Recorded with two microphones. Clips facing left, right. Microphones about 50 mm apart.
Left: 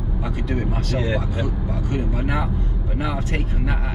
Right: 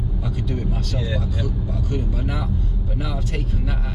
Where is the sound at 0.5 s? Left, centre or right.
Left.